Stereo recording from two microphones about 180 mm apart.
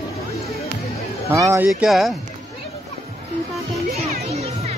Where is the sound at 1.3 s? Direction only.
15° right (ahead or behind).